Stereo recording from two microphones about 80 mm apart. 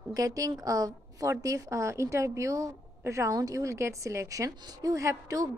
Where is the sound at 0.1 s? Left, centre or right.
Right.